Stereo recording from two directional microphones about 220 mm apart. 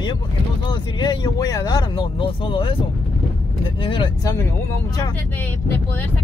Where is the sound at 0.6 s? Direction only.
20° left (ahead or behind).